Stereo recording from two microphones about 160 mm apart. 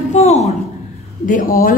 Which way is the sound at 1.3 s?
60° left (ahead or behind).